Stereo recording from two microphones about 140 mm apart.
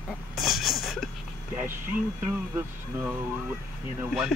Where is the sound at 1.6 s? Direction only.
15° right (ahead or behind).